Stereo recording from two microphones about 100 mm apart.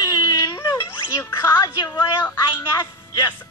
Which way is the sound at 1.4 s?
40° left (ahead or behind).